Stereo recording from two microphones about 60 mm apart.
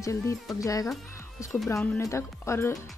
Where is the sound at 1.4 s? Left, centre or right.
Left.